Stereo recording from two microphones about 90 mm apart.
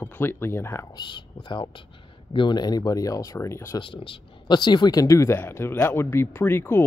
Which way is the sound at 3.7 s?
70° left (ahead or behind).